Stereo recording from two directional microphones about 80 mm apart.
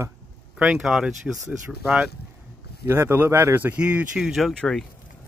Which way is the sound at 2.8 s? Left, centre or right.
Right.